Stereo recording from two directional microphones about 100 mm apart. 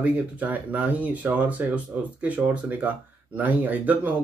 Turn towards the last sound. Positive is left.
turn(degrees=-15)  # may be behind; listen again after turning